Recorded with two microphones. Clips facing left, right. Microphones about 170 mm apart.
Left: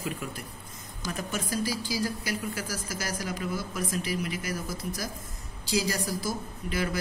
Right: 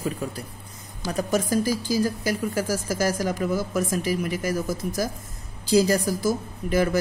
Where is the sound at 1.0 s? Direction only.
40° right (ahead or behind).